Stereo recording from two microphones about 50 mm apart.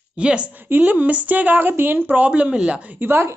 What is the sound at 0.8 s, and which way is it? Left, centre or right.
Speech, right.